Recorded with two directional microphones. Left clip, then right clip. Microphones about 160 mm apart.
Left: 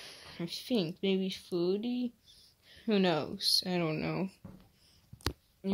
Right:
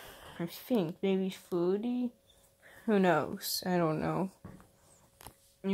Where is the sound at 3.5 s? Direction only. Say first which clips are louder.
Left 6 dB; 20° right (ahead or behind).